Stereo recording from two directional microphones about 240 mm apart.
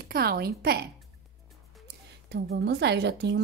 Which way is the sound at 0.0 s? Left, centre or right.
Right.